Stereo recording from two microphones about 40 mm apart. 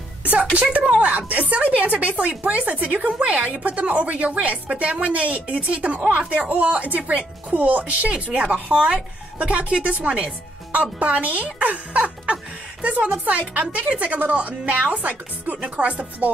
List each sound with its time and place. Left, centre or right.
0.2 s a sound: right
0.6 s speech: right
8.1 s speech: right